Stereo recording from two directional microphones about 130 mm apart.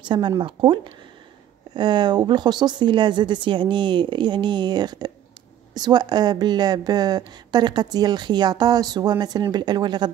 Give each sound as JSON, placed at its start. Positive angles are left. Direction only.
{"t": 0.0, "sound": "a woman's voice", "side_deg": -35}